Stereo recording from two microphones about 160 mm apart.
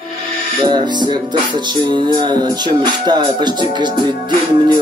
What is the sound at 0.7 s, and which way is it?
Music, 25° right (ahead or behind).